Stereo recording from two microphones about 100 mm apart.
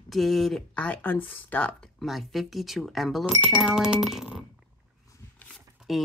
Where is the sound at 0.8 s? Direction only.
15° left (ahead or behind).